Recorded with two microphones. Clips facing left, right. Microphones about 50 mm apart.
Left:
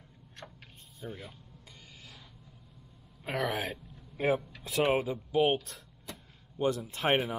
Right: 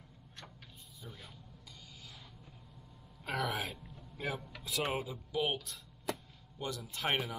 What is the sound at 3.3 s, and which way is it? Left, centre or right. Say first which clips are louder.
Speech: left 4 dB; left.